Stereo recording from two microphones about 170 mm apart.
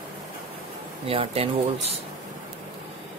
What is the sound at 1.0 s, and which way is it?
Speech, 35° right (ahead or behind).